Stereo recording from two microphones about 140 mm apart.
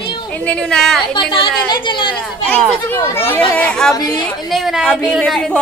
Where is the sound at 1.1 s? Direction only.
35° left (ahead or behind).